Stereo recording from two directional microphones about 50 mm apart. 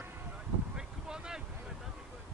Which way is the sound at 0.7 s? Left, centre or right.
Centre.